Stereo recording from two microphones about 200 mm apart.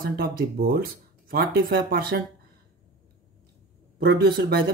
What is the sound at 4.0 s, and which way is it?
Speech, 50° right (ahead or behind).